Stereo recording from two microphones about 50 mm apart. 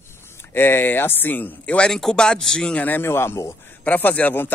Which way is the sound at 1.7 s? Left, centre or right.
Centre.